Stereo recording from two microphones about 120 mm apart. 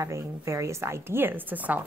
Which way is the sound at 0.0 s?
25° right (ahead or behind).